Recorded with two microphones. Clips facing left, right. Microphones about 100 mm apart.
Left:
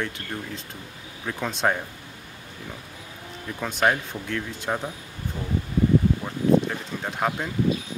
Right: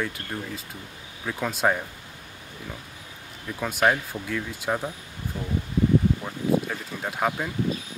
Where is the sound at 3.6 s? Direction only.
5° right (ahead or behind).